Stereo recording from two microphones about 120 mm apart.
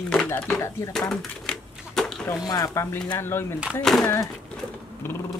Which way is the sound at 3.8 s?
5° left (ahead or behind).